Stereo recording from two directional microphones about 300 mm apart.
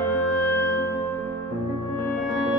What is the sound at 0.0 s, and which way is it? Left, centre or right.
Music, centre.